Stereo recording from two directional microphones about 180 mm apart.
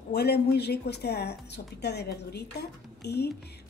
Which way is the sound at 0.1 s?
65° left (ahead or behind).